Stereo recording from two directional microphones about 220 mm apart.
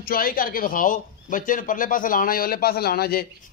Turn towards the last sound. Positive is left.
turn(degrees=45)  # may be behind; listen again after turning